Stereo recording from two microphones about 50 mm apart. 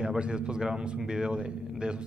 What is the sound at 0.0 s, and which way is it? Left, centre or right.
Speech, centre.